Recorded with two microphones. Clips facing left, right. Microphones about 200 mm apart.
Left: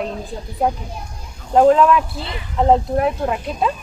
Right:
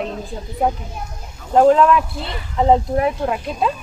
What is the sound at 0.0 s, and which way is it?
A woman's voice, centre (ahead or behind).